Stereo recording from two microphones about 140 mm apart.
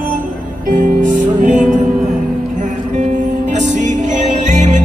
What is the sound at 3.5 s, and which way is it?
Music, 60° right (ahead or behind).